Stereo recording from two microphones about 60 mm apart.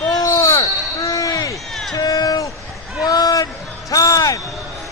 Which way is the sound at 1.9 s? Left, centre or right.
Left.